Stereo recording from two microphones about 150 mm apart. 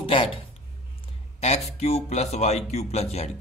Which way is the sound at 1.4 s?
45° left (ahead or behind).